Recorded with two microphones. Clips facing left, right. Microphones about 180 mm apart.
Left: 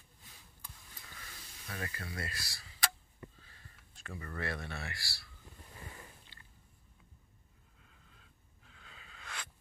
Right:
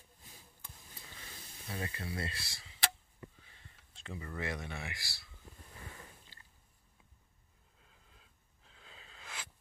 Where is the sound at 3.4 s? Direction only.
20° right (ahead or behind).